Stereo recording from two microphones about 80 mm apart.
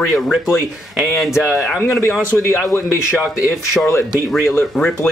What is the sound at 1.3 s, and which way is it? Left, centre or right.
Speech, left.